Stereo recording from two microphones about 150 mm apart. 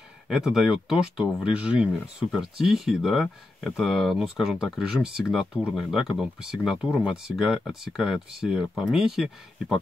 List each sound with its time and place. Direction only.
0.3 s speech: 5° right (ahead or behind)